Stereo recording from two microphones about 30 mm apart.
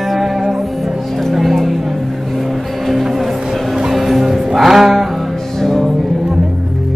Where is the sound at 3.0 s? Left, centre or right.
Centre.